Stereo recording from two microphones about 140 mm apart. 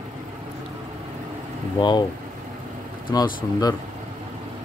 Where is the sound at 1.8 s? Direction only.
35° left (ahead or behind).